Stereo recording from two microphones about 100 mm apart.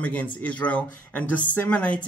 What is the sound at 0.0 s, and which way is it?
Speech, 15° left (ahead or behind).